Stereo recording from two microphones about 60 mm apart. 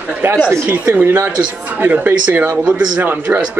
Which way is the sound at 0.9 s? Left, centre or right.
Right.